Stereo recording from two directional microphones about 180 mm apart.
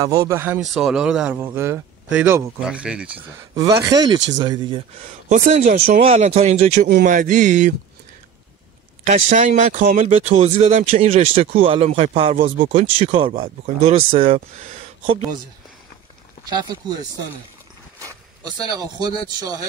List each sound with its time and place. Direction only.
0.0 s a man's voice: 20° right (ahead or behind)
3.2 s speech: 20° right (ahead or behind)
5.0 s speech: 45° right (ahead or behind)
9.0 s speech: 40° right (ahead or behind)
10.2 s speech: 35° right (ahead or behind)
16.4 s speech: 20° right (ahead or behind)